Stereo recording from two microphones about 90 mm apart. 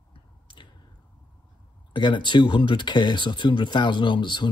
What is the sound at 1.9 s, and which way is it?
Speech, 60° left (ahead or behind).